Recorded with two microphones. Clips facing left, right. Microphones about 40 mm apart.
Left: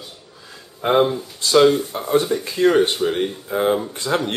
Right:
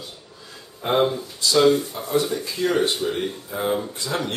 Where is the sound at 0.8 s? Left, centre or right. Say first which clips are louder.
Left 4 dB; left.